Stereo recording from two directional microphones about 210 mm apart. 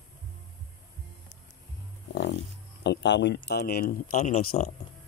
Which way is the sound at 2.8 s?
55° left (ahead or behind).